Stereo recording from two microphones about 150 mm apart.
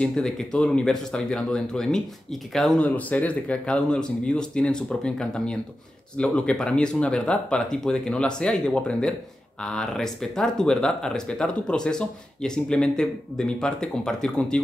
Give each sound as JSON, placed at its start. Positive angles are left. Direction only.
{"t": 0.0, "sound": "speech", "side_deg": 5}